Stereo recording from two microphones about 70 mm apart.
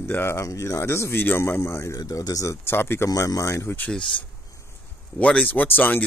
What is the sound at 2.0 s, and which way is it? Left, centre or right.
Speech, left.